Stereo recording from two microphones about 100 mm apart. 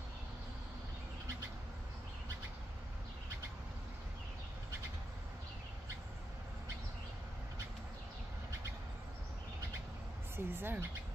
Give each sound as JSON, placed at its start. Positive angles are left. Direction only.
{"t": 10.3, "sound": "speech", "side_deg": -20}